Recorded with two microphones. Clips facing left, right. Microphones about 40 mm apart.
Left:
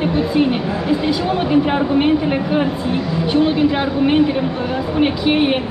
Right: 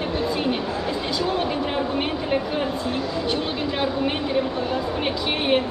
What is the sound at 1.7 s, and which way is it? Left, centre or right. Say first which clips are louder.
A woman's voice: left 9 dB; left.